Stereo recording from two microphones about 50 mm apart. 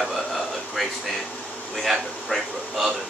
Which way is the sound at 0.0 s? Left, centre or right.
Centre.